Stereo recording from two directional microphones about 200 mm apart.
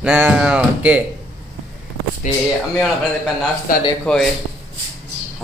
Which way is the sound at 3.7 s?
45° left (ahead or behind).